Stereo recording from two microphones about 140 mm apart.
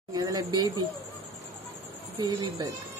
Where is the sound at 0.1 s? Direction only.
25° right (ahead or behind).